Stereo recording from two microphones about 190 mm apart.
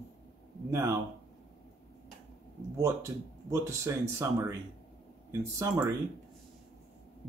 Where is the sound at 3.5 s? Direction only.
15° right (ahead or behind).